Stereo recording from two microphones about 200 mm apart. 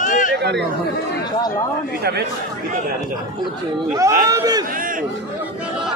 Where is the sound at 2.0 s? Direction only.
55° right (ahead or behind).